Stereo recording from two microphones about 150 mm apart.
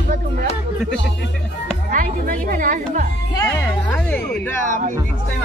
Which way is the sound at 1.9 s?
60° right (ahead or behind).